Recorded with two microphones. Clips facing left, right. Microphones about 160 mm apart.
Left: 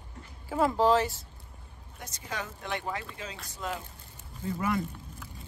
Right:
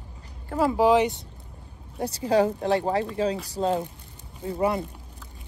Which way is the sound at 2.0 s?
35° right (ahead or behind).